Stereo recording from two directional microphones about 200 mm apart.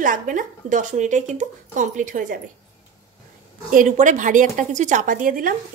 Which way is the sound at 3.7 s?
40° right (ahead or behind).